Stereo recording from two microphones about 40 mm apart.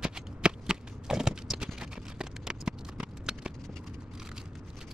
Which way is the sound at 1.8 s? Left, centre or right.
Centre.